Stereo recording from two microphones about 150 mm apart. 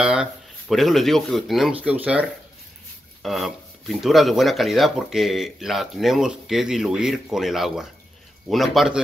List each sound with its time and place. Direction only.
0.0 s speech: 5° right (ahead or behind)